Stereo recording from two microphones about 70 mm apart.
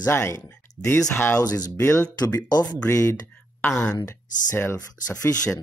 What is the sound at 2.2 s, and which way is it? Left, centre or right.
Speech, left.